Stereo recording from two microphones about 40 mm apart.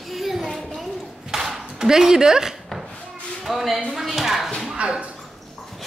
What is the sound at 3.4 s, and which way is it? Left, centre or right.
Speech, centre.